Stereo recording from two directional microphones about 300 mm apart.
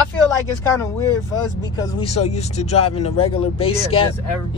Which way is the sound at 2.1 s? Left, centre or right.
Left.